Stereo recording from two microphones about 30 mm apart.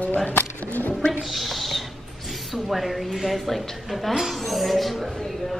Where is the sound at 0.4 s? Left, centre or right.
Left.